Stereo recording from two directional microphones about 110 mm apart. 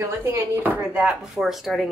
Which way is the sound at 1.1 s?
Centre (ahead or behind).